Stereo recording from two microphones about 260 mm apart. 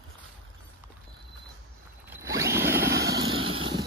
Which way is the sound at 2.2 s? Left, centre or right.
Centre.